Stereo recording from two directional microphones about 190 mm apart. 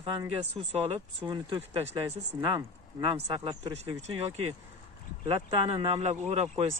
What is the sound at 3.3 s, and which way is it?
Speech, 25° right (ahead or behind).